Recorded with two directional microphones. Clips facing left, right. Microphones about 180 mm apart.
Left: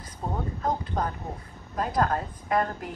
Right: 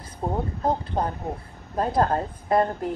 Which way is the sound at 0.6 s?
30° right (ahead or behind).